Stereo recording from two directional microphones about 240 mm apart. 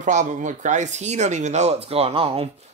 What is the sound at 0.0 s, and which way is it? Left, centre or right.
Speech, right.